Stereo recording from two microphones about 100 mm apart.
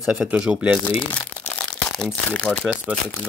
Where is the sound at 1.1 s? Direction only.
15° left (ahead or behind).